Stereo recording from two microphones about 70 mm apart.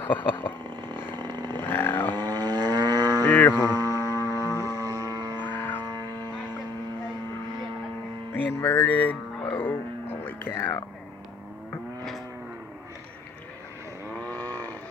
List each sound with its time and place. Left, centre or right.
0.0 s speech: left
1.1 s vehicle: right
1.6 s vehicle: left
2.1 s vehicle: right
3.3 s music: left
3.5 s hum: right
4.5 s a sound: left
4.7 s a sound: right
5.4 s music: left
5.9 s a sound: right
8.6 s music: left
14.2 s wild animals: left